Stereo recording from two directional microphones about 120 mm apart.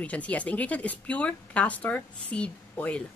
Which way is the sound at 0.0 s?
10° left (ahead or behind).